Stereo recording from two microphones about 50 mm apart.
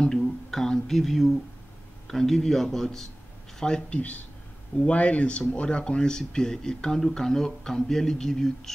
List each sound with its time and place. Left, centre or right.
0.0 s speech: centre
4.9 s speech: left; by 8.7 s centre